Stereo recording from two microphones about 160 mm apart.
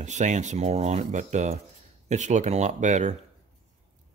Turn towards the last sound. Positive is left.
turn(degrees=-50)  # may be behind; listen again after turning